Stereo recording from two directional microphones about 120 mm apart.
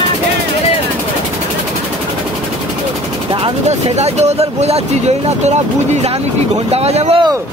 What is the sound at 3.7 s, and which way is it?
Speech, 65° right (ahead or behind).